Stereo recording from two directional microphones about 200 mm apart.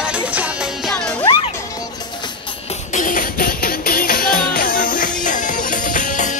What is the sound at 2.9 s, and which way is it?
Music, 40° left (ahead or behind).